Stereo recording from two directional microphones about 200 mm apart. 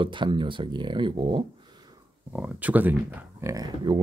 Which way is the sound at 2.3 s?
5° right (ahead or behind).